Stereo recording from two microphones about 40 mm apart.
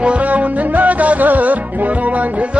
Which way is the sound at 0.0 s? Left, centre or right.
Right.